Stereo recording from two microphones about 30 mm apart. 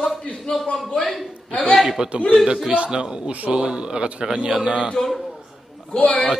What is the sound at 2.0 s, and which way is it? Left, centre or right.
A man's voice, right.